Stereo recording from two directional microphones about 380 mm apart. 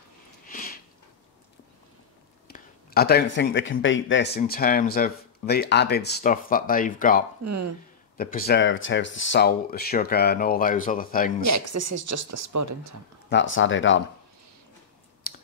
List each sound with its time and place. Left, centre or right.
0.5 s a sound: left
2.4 s speech: left
11.4 s speech: right
13.3 s speech: left